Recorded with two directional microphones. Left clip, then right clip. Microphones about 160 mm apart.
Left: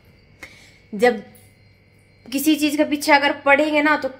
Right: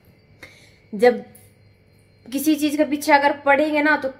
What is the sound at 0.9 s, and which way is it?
Speech, 15° left (ahead or behind).